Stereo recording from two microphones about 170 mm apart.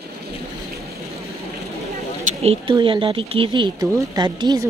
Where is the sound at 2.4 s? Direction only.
30° right (ahead or behind).